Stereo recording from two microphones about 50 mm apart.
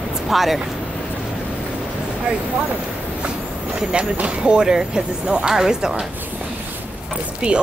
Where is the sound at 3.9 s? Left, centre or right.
Right.